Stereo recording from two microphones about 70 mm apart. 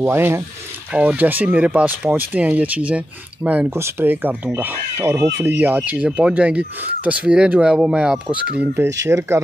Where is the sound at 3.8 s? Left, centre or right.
Right; by 8.4 s centre.